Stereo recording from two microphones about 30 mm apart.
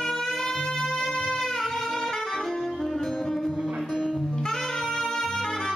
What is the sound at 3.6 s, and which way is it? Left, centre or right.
Music, centre.